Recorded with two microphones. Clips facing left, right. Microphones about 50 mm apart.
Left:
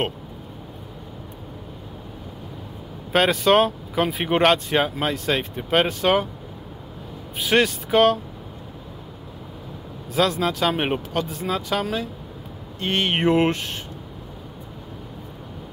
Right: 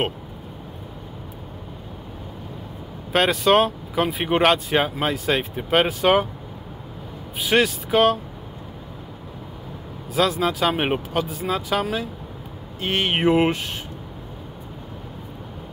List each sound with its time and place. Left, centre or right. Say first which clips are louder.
3.1 s speech: even; centre
7.3 s speech: even; centre
10.1 s speech: even; centre